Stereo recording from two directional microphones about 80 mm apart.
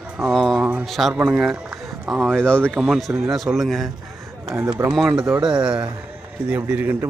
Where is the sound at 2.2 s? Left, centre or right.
Centre.